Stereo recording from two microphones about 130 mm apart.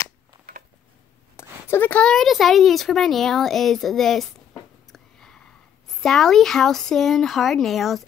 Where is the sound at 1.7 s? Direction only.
10° left (ahead or behind).